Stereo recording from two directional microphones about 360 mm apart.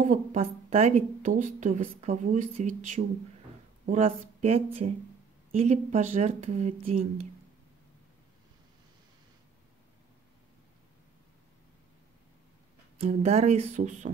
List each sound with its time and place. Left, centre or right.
0.0 s a woman's voice: centre
12.9 s a woman's voice: centre